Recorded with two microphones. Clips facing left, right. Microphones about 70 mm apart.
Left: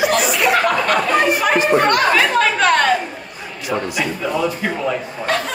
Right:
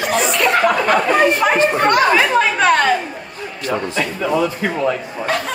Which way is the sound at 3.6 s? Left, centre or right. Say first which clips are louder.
Right 1 dB; centre.